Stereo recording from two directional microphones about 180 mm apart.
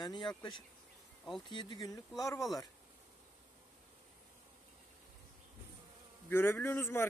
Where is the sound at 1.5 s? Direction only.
25° left (ahead or behind).